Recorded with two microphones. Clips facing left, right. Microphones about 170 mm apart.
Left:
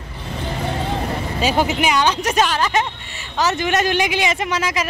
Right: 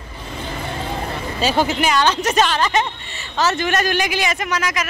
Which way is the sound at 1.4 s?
15° left (ahead or behind).